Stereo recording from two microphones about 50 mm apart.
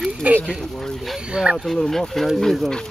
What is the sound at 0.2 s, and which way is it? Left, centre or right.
Speech, right.